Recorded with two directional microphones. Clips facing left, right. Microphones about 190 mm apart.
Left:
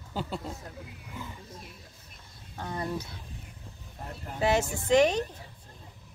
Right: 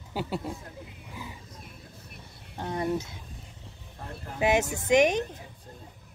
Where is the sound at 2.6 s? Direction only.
20° right (ahead or behind).